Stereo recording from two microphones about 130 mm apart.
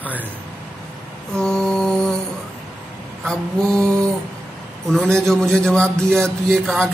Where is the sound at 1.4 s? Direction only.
5° left (ahead or behind).